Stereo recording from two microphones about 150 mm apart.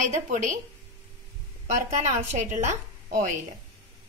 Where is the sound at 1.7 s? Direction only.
55° right (ahead or behind).